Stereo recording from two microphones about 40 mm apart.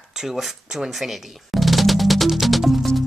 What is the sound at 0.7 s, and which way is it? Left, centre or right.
Music, centre.